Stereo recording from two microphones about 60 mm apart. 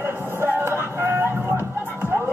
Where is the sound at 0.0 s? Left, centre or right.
Right.